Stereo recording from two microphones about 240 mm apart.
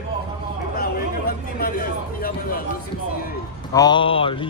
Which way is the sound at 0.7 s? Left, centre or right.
Left.